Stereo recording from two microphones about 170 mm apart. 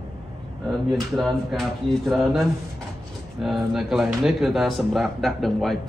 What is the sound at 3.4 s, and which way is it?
Speech, centre (ahead or behind).